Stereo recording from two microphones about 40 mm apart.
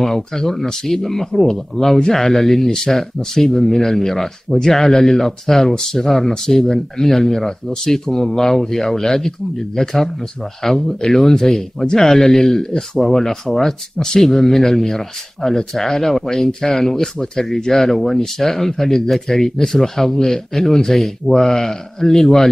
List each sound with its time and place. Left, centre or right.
0.0 s speech: centre
14.2 s speech: centre